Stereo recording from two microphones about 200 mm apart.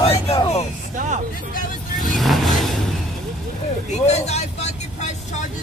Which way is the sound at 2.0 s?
Centre (ahead or behind).